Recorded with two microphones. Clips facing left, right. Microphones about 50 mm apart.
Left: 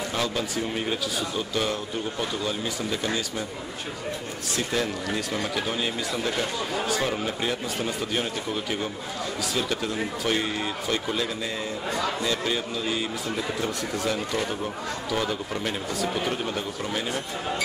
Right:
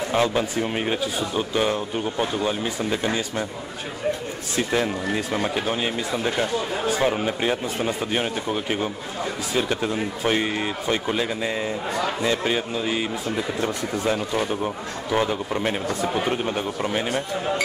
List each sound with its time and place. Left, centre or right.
0.1 s speech: right
4.6 s speech: right